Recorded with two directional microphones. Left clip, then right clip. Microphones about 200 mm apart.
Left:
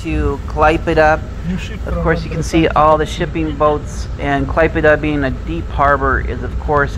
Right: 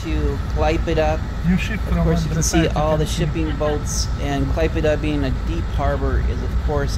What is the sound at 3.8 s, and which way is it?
Speech, 30° right (ahead or behind).